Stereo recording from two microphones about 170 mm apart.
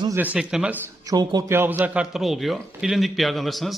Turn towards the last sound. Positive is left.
turn(degrees=0)  # may be behind; listen again after turning